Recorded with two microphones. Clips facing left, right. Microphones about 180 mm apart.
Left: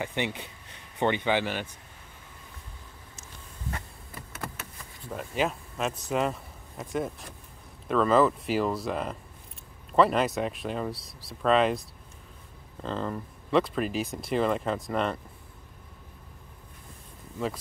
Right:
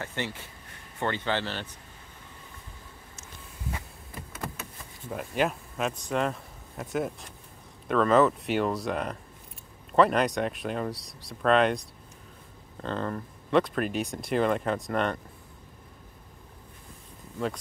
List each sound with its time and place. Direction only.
0.0 s speech: 15° left (ahead or behind)
5.1 s a man's voice: centre (ahead or behind)
12.8 s speech: centre (ahead or behind)